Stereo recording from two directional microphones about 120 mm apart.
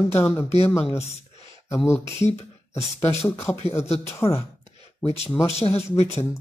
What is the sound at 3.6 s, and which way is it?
Speech, 60° left (ahead or behind).